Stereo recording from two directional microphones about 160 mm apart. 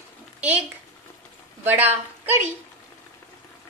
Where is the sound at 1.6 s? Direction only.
10° right (ahead or behind).